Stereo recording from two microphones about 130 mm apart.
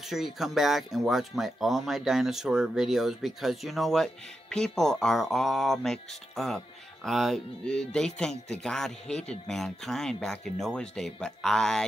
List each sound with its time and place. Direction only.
0.1 s speech: centre (ahead or behind)